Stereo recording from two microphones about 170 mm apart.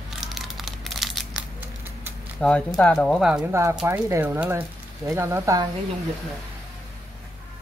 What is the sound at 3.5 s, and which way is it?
Speech, 15° right (ahead or behind).